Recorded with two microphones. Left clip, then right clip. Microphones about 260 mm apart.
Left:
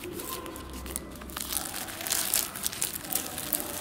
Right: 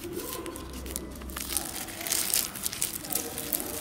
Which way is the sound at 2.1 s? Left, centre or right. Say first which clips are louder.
Right 1 dB; centre.